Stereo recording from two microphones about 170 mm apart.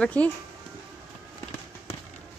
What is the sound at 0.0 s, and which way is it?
Speech, 5° left (ahead or behind).